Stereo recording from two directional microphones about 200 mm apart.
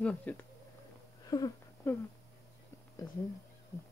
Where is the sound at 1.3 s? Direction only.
20° left (ahead or behind).